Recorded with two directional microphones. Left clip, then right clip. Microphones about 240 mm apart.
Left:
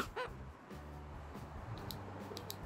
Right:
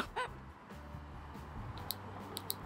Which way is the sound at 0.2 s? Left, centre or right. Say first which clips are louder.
Right 6 dB; centre.